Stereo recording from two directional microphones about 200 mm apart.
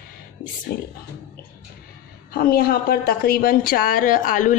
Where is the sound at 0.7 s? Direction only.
50° left (ahead or behind).